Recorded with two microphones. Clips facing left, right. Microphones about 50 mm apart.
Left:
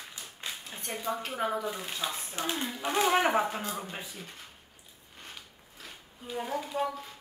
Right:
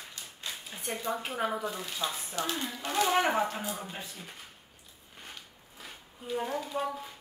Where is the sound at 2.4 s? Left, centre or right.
Left.